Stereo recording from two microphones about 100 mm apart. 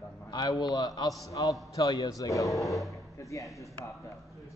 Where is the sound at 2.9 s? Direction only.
30° left (ahead or behind).